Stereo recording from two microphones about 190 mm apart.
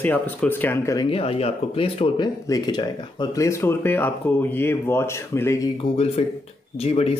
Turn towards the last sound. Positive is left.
turn(degrees=30)  # may be behind; listen again after turning